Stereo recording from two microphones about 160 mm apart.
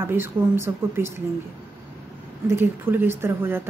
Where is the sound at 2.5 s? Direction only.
15° right (ahead or behind).